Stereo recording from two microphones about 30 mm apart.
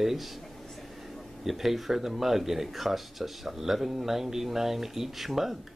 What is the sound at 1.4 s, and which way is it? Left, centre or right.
Speech, centre.